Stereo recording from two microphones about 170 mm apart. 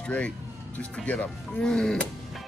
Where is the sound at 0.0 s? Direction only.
5° left (ahead or behind).